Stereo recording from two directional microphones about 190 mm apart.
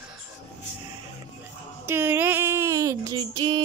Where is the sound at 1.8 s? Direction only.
10° right (ahead or behind).